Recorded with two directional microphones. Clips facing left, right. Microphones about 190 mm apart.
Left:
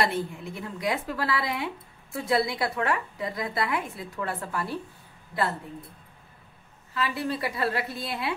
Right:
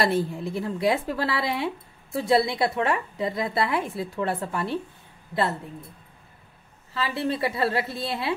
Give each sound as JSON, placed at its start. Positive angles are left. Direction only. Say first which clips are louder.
{"t": 0.0, "sound": "a woman's voice", "louder": "right 4 dB", "side_deg": -35}
{"t": 6.9, "sound": "a woman's voice", "louder": "right 2 dB", "side_deg": -30}